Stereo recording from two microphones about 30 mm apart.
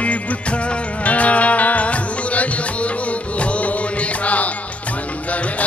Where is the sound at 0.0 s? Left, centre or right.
Left.